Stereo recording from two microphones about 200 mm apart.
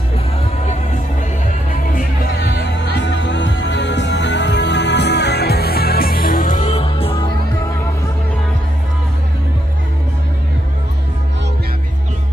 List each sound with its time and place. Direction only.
2.9 s music: 65° left (ahead or behind); by 7.3 s 25° left (ahead or behind)